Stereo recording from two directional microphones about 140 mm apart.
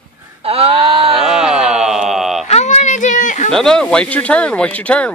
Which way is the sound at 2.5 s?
55° left (ahead or behind).